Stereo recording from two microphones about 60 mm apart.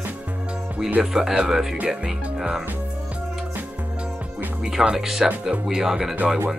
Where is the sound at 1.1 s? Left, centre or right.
Centre.